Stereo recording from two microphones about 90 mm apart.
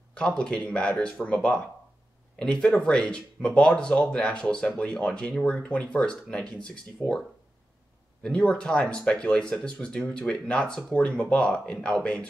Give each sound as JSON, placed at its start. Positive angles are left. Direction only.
{"t": 0.1, "sound": "speech", "side_deg": 10}
{"t": 8.2, "sound": "speech", "side_deg": 10}